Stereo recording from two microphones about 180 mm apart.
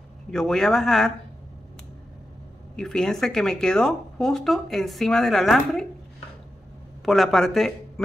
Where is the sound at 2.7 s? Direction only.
5° left (ahead or behind).